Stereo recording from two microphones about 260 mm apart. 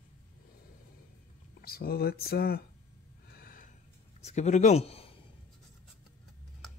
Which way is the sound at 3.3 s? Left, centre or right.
Left.